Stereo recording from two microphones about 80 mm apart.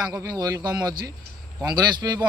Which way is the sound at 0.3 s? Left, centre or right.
Right.